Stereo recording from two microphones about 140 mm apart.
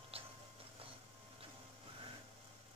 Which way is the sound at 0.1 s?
45° right (ahead or behind).